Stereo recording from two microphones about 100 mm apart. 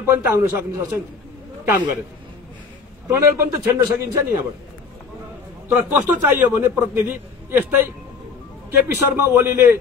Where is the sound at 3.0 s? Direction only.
30° right (ahead or behind).